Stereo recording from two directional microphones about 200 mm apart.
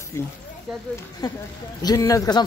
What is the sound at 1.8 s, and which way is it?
Speech, 20° left (ahead or behind).